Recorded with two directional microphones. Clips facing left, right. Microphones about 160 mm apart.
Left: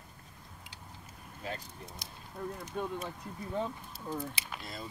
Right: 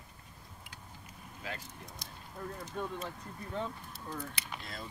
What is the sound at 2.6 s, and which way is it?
Speech, 10° left (ahead or behind).